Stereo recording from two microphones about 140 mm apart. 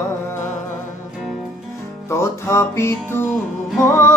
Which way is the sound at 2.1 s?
20° left (ahead or behind).